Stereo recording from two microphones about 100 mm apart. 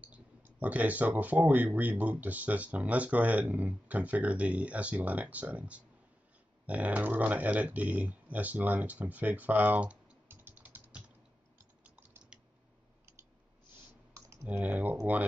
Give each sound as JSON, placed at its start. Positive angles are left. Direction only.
{"t": 0.0, "sound": "speech", "side_deg": -15}
{"t": 11.5, "sound": "typing", "side_deg": -20}
{"t": 14.4, "sound": "speech", "side_deg": -15}